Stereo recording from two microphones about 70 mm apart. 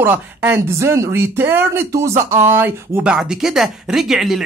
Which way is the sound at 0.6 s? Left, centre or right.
Right.